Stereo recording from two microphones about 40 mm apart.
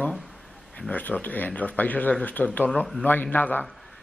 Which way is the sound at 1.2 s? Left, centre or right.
Left.